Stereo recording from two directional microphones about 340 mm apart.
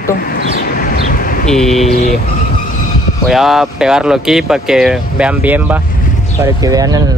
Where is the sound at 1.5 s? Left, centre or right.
Centre.